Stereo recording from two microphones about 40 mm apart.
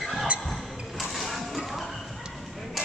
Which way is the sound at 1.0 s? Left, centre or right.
Centre.